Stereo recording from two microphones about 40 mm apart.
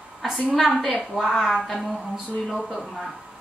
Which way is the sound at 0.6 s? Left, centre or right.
Centre.